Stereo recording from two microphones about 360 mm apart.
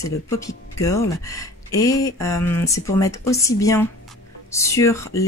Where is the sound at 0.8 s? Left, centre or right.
Centre.